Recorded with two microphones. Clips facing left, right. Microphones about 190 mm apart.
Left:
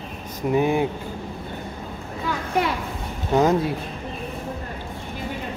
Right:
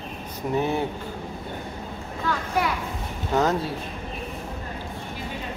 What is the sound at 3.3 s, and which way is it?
Speech, 15° left (ahead or behind).